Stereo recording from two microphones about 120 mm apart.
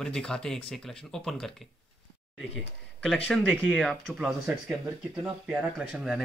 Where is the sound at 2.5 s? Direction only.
Centre (ahead or behind).